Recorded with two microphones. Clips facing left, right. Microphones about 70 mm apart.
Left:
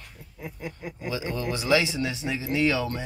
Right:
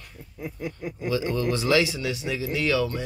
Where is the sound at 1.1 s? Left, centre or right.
Left.